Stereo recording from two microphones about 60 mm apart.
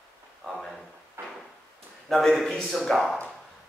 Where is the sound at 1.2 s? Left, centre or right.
Right.